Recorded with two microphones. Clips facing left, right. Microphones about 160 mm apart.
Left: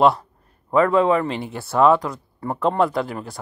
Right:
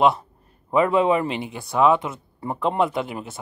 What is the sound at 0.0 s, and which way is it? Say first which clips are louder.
A man's voice: left 2 dB; 20° right (ahead or behind).